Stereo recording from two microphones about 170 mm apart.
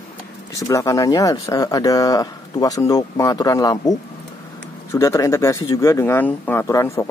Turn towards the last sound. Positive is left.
turn(degrees=15)  # may be behind; listen again after turning